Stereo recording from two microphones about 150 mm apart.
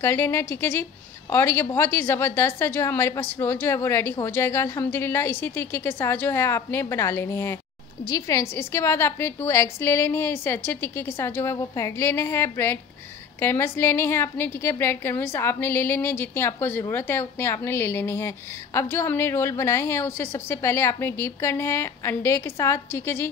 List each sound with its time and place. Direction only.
0.0 s a woman's voice: 15° left (ahead or behind)